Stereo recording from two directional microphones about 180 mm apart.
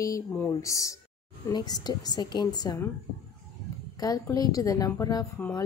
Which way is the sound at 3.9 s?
20° left (ahead or behind).